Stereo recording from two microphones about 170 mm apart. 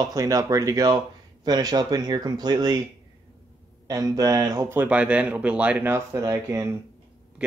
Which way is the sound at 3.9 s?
20° right (ahead or behind).